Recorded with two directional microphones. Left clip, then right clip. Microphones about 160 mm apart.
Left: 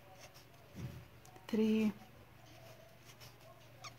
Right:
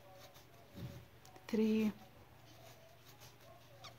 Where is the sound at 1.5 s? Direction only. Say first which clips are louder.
Left 1 dB; 5° left (ahead or behind).